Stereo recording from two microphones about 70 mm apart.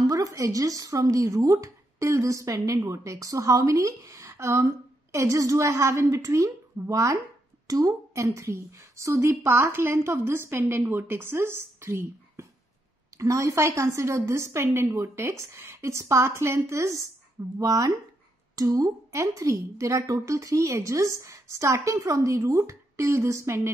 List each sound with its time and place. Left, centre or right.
0.0 s a woman's voice: right
17.6 s speech: right